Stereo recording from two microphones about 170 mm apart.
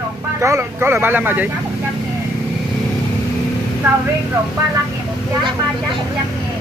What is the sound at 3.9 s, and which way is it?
Speech, 10° right (ahead or behind).